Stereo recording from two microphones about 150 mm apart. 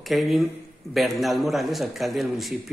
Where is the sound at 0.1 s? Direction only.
5° right (ahead or behind).